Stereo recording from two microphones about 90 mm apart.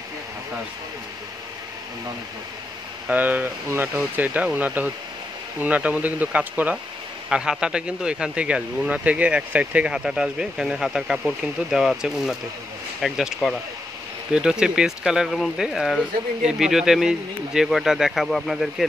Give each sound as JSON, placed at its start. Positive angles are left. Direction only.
{"t": 3.1, "sound": "speech", "side_deg": -20}